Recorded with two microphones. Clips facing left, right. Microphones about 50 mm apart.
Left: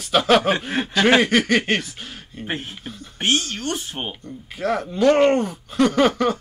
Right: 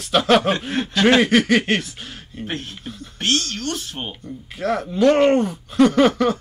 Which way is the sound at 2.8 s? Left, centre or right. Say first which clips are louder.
Right 1 dB; centre.